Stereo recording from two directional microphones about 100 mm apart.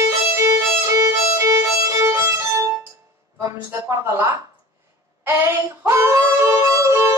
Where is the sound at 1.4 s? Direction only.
30° right (ahead or behind).